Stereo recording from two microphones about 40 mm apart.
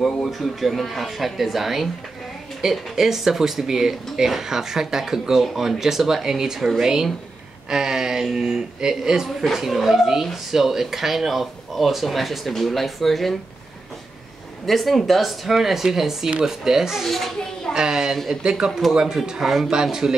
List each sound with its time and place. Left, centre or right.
0.0 s speech: centre
14.7 s speech: centre
17.0 s speech: centre
17.7 s speech: centre
19.4 s speech: centre
19.7 s speech: centre